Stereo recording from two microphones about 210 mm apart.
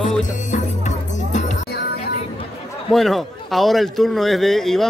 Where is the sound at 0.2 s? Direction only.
35° left (ahead or behind).